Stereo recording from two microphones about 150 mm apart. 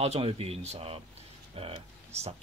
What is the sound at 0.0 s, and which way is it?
Speech, 45° right (ahead or behind).